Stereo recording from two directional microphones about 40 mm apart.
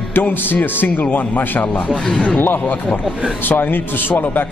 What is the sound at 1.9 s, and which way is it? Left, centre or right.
Speech, centre.